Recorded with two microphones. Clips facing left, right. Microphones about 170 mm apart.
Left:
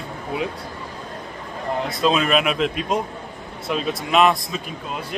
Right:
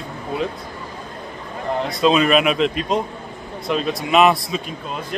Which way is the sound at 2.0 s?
Centre (ahead or behind).